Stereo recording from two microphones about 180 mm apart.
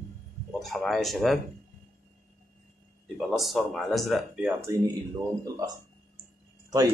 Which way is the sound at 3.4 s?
Centre (ahead or behind).